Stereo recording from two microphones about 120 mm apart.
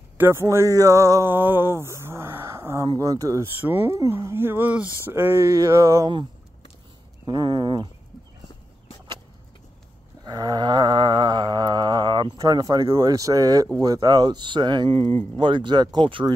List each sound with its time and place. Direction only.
0.2 s speech: 20° right (ahead or behind)
7.2 s speech: 40° right (ahead or behind)
10.2 s a sound: 35° right (ahead or behind)
12.4 s speech: 30° right (ahead or behind)
14.9 s speech: 50° right (ahead or behind)
15.3 s speech: 40° right (ahead or behind)